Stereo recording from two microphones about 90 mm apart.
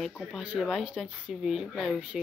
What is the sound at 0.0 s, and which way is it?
Speech, centre (ahead or behind).